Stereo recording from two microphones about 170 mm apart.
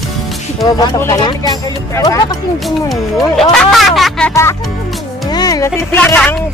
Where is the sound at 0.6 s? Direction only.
25° left (ahead or behind).